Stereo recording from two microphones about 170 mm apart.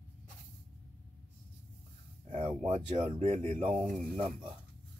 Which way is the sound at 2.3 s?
35° right (ahead or behind).